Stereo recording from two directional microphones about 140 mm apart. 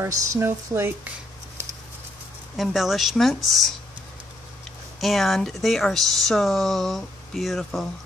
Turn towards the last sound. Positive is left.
turn(degrees=0)  # may be behind; listen again after turning